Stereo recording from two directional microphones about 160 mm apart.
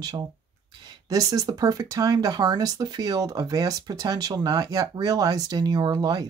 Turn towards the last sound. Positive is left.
turn(degrees=-25)  # may be behind; listen again after turning